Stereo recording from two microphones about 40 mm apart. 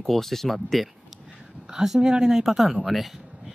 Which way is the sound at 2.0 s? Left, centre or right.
Centre.